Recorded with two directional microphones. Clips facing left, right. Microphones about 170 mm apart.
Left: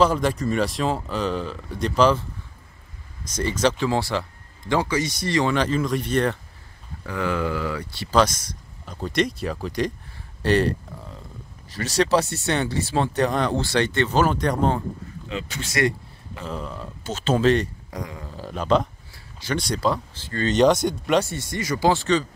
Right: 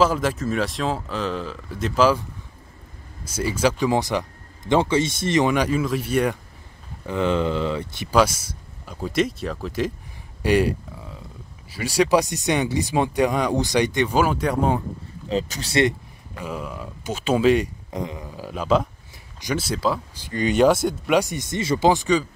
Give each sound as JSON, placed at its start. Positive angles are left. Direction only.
{"t": 0.0, "sound": "speech", "side_deg": -5}
{"t": 3.3, "sound": "speech", "side_deg": -10}
{"t": 7.1, "sound": "speech", "side_deg": -25}
{"t": 15.2, "sound": "speech", "side_deg": -40}
{"t": 16.3, "sound": "speech", "side_deg": -10}
{"t": 17.9, "sound": "a sound", "side_deg": -20}
{"t": 18.3, "sound": "speech", "side_deg": -5}
{"t": 20.2, "sound": "speech", "side_deg": -15}